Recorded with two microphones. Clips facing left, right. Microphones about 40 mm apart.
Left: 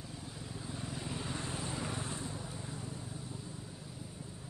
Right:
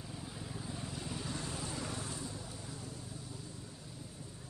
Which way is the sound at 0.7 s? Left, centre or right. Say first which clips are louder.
Left 3 dB; centre.